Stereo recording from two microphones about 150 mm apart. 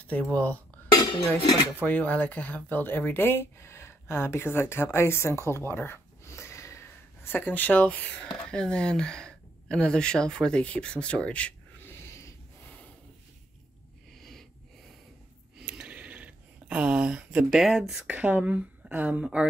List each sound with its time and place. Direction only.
0.0 s speech: 10° left (ahead or behind)
0.9 s speech: 30° left (ahead or behind)
1.8 s speech: 10° left (ahead or behind)
5.7 s a sound: 15° left (ahead or behind)
15.5 s speech: 5° right (ahead or behind)